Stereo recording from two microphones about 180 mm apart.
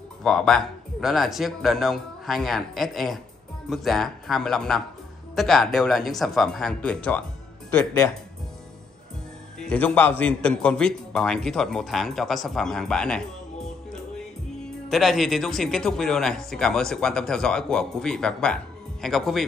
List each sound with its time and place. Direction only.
0.2 s speech: 5° left (ahead or behind)
9.6 s speech: 5° left (ahead or behind)
14.9 s speech: centre (ahead or behind)